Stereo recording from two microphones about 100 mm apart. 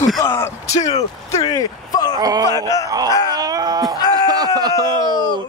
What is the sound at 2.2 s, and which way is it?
Speech, 40° right (ahead or behind).